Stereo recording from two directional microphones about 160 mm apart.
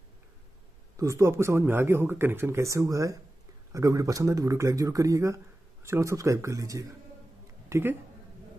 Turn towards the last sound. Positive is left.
turn(degrees=-15)  # may be behind; listen again after turning